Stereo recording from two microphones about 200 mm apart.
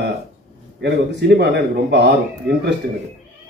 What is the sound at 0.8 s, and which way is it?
A man's voice, 55° right (ahead or behind).